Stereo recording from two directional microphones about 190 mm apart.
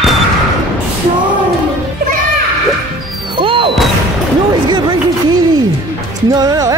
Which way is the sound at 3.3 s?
25° right (ahead or behind).